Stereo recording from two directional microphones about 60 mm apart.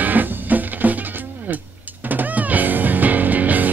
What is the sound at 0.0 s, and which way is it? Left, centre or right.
Music, right.